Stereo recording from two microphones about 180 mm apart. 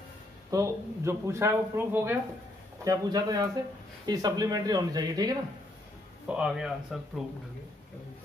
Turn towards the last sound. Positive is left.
turn(degrees=0)  # may be behind; listen again after turning